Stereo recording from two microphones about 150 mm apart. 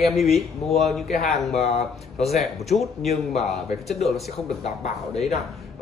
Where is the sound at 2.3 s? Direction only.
Centre (ahead or behind).